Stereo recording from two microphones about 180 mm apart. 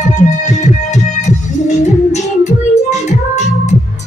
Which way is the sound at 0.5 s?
40° left (ahead or behind).